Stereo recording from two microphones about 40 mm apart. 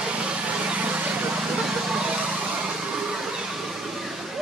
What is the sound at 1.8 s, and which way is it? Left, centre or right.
Vehicle, centre.